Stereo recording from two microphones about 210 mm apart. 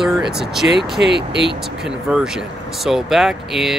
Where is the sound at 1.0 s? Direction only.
55° right (ahead or behind).